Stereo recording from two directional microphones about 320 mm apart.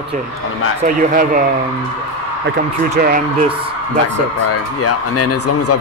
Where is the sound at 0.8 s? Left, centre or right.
Right.